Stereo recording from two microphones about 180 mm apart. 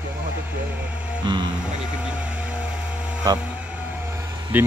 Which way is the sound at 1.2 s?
25° right (ahead or behind).